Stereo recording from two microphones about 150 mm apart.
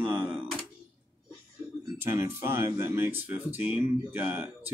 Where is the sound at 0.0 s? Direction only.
10° right (ahead or behind).